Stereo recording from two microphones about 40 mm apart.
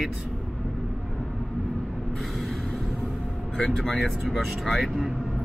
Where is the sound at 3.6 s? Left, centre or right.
Centre.